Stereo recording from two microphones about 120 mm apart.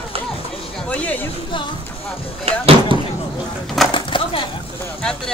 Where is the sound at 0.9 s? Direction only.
10° left (ahead or behind).